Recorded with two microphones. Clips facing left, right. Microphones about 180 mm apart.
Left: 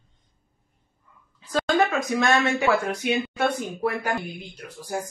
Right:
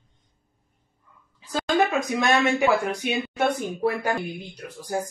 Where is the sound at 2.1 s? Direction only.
15° right (ahead or behind).